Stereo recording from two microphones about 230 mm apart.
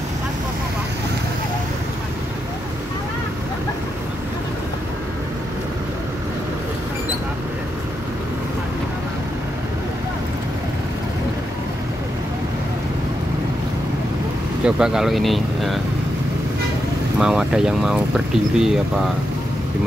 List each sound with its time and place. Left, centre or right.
14.6 s speech: centre
17.2 s speech: centre